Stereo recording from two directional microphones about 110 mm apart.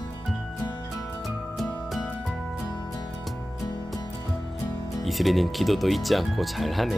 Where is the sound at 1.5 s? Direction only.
Centre (ahead or behind).